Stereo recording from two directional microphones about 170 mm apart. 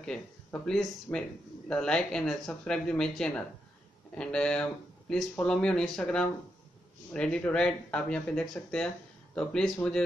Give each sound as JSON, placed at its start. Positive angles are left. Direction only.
{"t": 0.0, "sound": "speech", "side_deg": 5}